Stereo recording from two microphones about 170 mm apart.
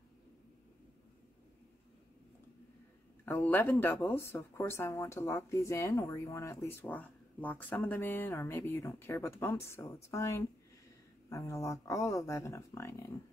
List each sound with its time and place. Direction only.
3.3 s speech: 10° left (ahead or behind)